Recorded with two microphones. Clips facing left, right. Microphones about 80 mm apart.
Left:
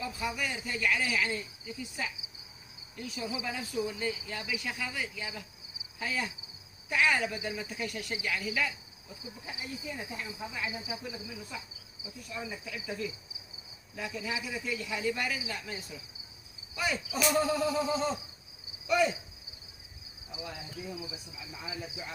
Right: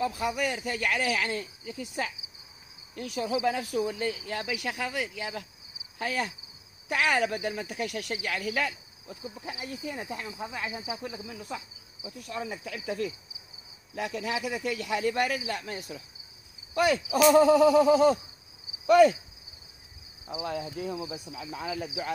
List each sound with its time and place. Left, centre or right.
0.0 s speech: right
12.2 s speech: right
16.7 s speech: right
18.9 s speech: right
20.2 s cricket: right
21.3 s speech: right